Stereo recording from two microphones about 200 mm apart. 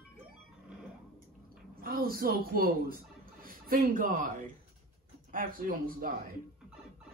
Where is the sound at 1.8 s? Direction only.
50° right (ahead or behind).